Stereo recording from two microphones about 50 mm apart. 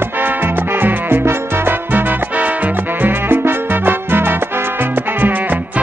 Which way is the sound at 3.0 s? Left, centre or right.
Right.